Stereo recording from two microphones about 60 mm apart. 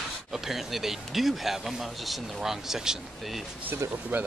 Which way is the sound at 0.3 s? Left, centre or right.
Centre.